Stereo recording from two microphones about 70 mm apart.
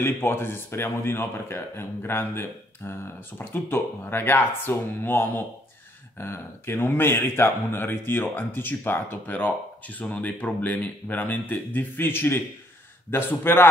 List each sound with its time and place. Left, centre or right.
0.0 s a man's voice: left